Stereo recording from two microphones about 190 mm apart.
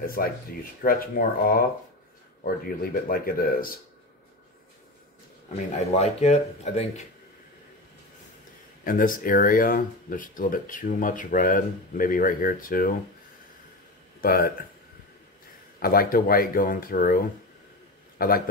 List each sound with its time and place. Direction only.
0.0 s speech: 50° left (ahead or behind)
5.9 s speech: 35° left (ahead or behind)
8.8 s speech: 45° left (ahead or behind)
14.2 s speech: 50° left (ahead or behind)
15.8 s speech: 50° left (ahead or behind)
18.1 s a sound: 50° left (ahead or behind)